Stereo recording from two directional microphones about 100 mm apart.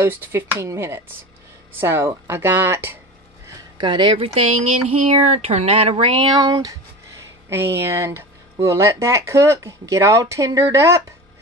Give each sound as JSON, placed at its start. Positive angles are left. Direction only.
{"t": 0.0, "sound": "speech", "side_deg": -20}
{"t": 3.7, "sound": "speech", "side_deg": -50}
{"t": 5.1, "sound": "speech", "side_deg": -90}
{"t": 7.4, "sound": "speech", "side_deg": -25}